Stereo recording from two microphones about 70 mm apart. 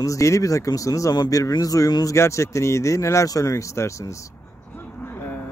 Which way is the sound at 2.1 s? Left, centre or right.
Left.